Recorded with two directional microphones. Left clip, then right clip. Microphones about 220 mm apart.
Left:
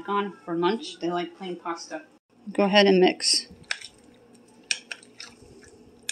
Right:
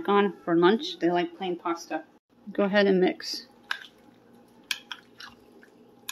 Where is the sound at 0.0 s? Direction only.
40° right (ahead or behind).